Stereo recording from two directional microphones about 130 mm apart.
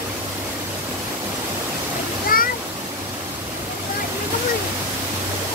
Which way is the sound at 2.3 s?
90° left.